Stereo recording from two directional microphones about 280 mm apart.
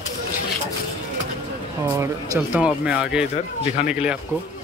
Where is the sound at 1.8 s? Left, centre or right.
Centre.